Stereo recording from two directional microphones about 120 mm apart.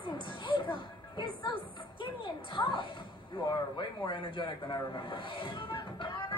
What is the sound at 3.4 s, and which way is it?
Speech, 40° left (ahead or behind).